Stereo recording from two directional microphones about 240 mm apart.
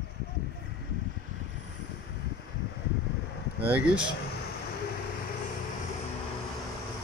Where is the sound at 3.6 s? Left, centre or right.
Centre.